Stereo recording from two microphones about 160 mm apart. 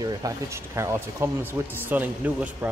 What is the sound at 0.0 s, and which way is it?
Speech, 20° right (ahead or behind).